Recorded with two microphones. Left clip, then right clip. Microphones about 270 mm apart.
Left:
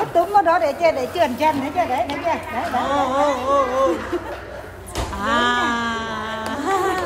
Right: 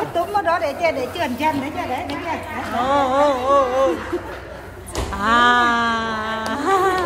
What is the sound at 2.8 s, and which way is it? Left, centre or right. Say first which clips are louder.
Speech: right 3 dB; centre.